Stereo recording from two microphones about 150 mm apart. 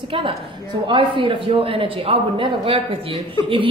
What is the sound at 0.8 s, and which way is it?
A woman's voice, 35° right (ahead or behind).